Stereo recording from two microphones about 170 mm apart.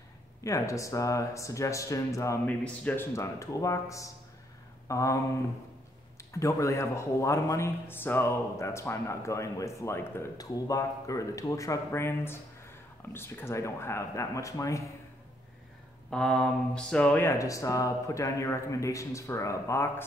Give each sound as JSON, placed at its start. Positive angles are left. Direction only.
{"t": 0.4, "sound": "speech", "side_deg": 20}
{"t": 4.8, "sound": "a sound", "side_deg": 20}
{"t": 6.1, "sound": "a man's voice", "side_deg": 15}
{"t": 16.1, "sound": "a man's voice", "side_deg": 5}